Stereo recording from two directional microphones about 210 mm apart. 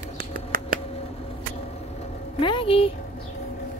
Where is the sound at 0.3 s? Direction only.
40° right (ahead or behind).